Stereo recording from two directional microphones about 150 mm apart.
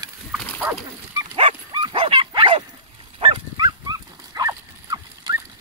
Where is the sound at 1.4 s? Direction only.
35° right (ahead or behind).